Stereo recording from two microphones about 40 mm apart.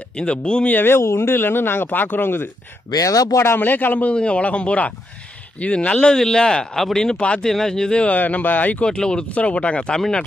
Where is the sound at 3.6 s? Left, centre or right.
Left.